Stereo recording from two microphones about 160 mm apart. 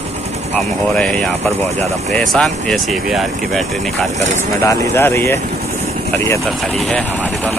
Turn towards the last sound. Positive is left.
turn(degrees=15)  # may be behind; listen again after turning